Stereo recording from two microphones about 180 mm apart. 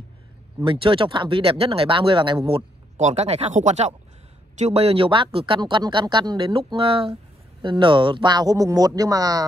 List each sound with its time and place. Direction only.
0.7 s speech: 30° right (ahead or behind)
3.0 s speech: 40° right (ahead or behind); by 9.4 s 20° right (ahead or behind)